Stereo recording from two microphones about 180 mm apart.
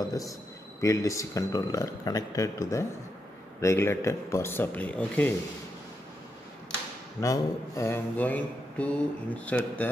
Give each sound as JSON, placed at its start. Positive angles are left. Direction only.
{"t": 0.0, "sound": "a man's voice", "side_deg": 20}
{"t": 0.7, "sound": "mantra", "side_deg": 15}
{"t": 7.2, "sound": "mantra", "side_deg": 15}